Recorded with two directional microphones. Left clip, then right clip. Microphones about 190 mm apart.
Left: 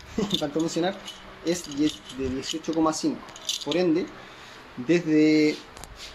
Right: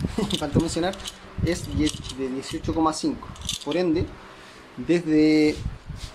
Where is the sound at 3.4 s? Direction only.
20° right (ahead or behind).